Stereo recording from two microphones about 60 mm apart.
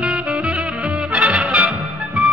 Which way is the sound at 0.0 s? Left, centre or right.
Centre.